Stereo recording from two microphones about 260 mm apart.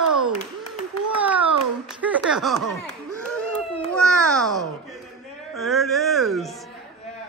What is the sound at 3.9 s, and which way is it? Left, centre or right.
A man's voice, centre.